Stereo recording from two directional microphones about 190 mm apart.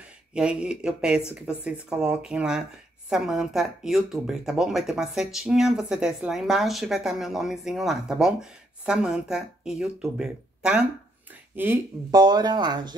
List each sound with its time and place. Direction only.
0.3 s speech: 5° right (ahead or behind); by 12.9 s 20° right (ahead or behind)